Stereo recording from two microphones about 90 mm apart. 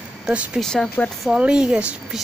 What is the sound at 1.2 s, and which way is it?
Speech, 10° right (ahead or behind).